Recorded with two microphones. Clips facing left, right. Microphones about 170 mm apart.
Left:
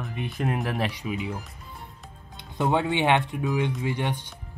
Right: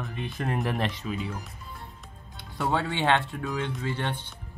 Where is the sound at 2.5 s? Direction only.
20° left (ahead or behind).